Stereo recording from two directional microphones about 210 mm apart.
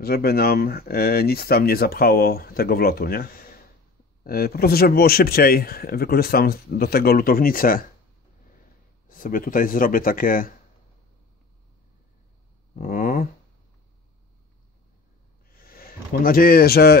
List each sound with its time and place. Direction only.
0.0 s speech: 45° left (ahead or behind)
9.1 s speech: 40° left (ahead or behind)
12.7 s a sound: 40° left (ahead or behind)
15.5 s a man's voice: 45° left (ahead or behind)